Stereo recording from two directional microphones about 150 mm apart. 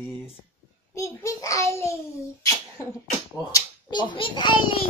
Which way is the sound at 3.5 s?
30° left (ahead or behind).